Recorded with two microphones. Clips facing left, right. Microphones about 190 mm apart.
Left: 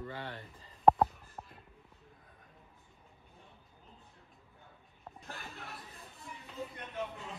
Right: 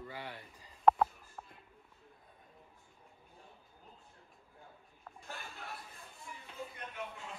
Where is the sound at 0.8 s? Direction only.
20° left (ahead or behind).